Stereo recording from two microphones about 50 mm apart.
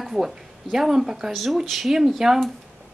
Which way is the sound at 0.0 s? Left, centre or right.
Centre.